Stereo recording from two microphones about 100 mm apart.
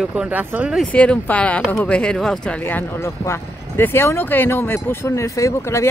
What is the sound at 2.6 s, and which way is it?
Speech, 20° left (ahead or behind).